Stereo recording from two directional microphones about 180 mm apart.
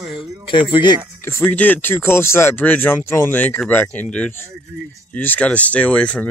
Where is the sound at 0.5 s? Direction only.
25° left (ahead or behind).